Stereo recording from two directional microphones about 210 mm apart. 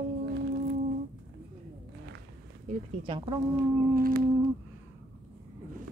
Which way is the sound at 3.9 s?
45° right (ahead or behind).